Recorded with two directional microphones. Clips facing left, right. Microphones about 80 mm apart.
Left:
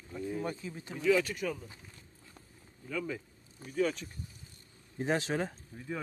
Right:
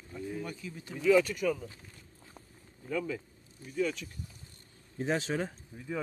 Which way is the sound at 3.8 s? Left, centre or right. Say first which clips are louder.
Left 1 dB; left.